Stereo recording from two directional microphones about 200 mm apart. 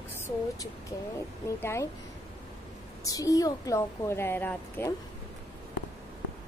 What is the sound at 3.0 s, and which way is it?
A woman's voice, 15° left (ahead or behind).